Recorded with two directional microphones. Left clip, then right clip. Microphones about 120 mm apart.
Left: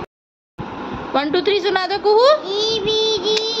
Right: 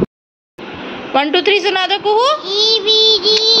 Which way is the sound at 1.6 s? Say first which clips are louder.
Right 4 dB; 10° left (ahead or behind).